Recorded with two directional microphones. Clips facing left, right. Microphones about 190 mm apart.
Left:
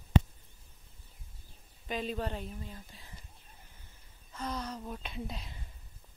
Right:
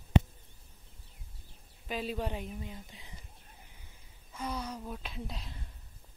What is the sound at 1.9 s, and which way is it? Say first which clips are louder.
Speech: even; 5° right (ahead or behind).